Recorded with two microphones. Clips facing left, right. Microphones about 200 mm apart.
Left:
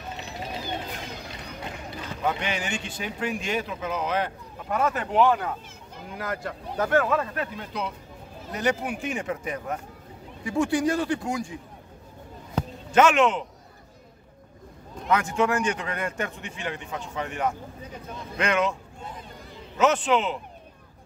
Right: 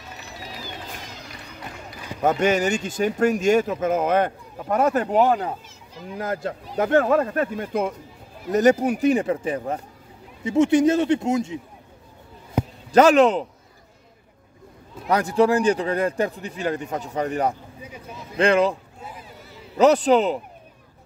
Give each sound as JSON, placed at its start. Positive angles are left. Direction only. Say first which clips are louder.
{"t": 2.2, "sound": "speech", "louder": "right 9 dB", "side_deg": -45}
{"t": 6.1, "sound": "a man's voice", "louder": "right 5 dB", "side_deg": -25}
{"t": 7.0, "sound": "a man's voice", "louder": "right 7 dB", "side_deg": -40}
{"t": 12.9, "sound": "a man's voice", "louder": "right 5 dB", "side_deg": -35}
{"t": 15.0, "sound": "a man's voice", "louder": "right 5 dB", "side_deg": -35}
{"t": 17.8, "sound": "speech", "louder": "right 2 dB", "side_deg": -10}
{"t": 18.4, "sound": "a man's voice", "louder": "right 7 dB", "side_deg": -30}
{"t": 18.9, "sound": "a sound", "louder": "even", "side_deg": -5}
{"t": 19.8, "sound": "a man's voice", "louder": "right 6 dB", "side_deg": -35}